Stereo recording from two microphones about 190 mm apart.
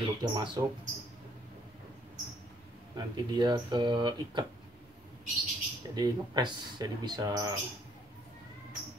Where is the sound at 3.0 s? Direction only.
25° right (ahead or behind).